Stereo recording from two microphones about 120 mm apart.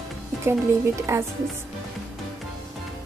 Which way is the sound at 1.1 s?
20° right (ahead or behind).